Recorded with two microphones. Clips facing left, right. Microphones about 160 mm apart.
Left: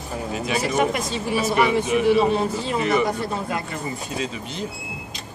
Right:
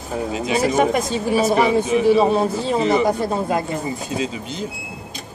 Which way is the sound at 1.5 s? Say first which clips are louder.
Even; 30° right (ahead or behind).